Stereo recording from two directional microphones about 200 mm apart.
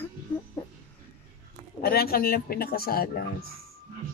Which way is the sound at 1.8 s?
50° left (ahead or behind).